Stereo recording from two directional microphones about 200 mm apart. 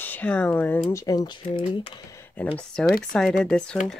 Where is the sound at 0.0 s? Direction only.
10° left (ahead or behind).